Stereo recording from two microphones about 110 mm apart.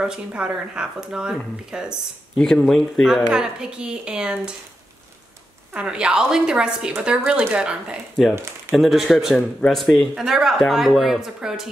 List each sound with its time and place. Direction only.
0.0 s speech: 10° right (ahead or behind)
2.3 s speech: 10° left (ahead or behind); by 4.6 s 10° right (ahead or behind)
5.7 s speech: 10° right (ahead or behind)
8.4 s speech: 25° right (ahead or behind)
8.7 s speech: centre (ahead or behind)